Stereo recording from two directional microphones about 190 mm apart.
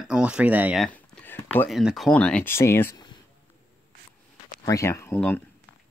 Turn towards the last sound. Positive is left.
turn(degrees=10)  # may be behind; listen again after turning